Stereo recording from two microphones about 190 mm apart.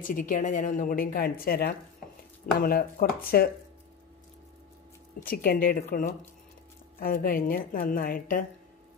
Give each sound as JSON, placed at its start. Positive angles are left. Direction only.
{"t": 0.0, "sound": "a woman's voice", "side_deg": 45}
{"t": 5.2, "sound": "a woman's voice", "side_deg": 50}